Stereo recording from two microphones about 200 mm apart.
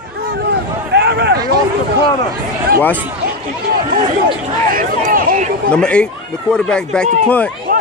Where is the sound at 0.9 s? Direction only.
55° right (ahead or behind).